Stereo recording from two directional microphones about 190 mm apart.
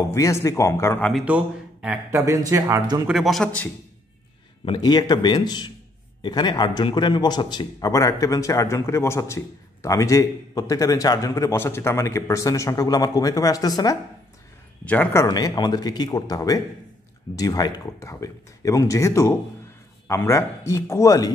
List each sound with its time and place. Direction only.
0.1 s a man's voice: 15° left (ahead or behind)
1.2 s speech: 5° right (ahead or behind)
3.1 s a man's voice: centre (ahead or behind)
4.6 s a man's voice: 20° left (ahead or behind)
14.9 s a man's voice: 10° left (ahead or behind)
15.2 s a man's voice: 20° left (ahead or behind)